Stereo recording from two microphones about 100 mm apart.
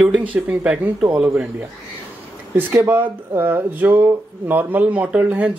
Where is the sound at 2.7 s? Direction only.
20° right (ahead or behind).